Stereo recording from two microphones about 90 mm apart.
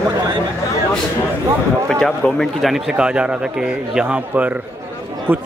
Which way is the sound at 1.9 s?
5° left (ahead or behind).